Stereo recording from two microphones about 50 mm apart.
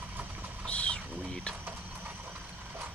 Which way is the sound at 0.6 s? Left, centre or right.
Left.